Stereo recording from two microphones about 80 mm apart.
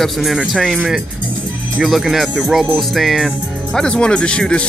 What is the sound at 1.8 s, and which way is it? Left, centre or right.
Speech, centre.